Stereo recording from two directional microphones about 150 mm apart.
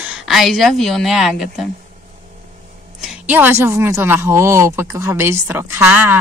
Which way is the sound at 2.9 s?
10° right (ahead or behind).